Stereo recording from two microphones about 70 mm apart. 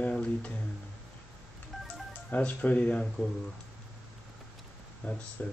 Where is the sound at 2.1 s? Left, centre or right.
Left.